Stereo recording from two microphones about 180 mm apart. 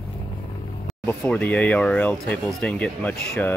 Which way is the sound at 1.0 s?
5° left (ahead or behind).